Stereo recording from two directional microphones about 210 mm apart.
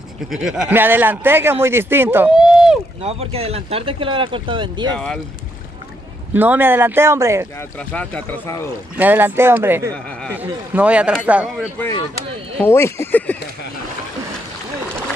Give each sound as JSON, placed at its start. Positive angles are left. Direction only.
{"t": 0.3, "sound": "speech", "side_deg": 0}
{"t": 3.0, "sound": "speech", "side_deg": -30}
{"t": 4.9, "sound": "speech", "side_deg": 5}
{"t": 6.3, "sound": "speech", "side_deg": -10}
{"t": 7.9, "sound": "speech", "side_deg": 5}
{"t": 8.9, "sound": "speech", "side_deg": -10}
{"t": 12.6, "sound": "speech", "side_deg": 10}